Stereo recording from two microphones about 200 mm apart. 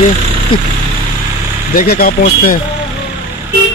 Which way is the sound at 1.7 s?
45° left (ahead or behind).